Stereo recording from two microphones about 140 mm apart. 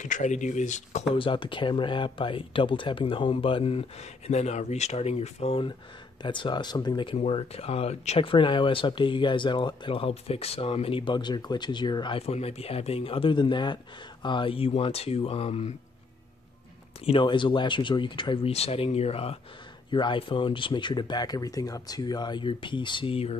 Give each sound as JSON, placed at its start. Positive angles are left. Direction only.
{"t": 0.0, "sound": "speech", "side_deg": 60}
{"t": 1.1, "sound": "speech", "side_deg": 40}
{"t": 7.2, "sound": "speech", "side_deg": 45}
{"t": 17.0, "sound": "speech", "side_deg": 40}
{"t": 19.9, "sound": "speech", "side_deg": 35}